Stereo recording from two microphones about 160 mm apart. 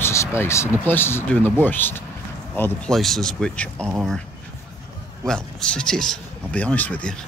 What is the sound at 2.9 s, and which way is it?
Speech, centre (ahead or behind).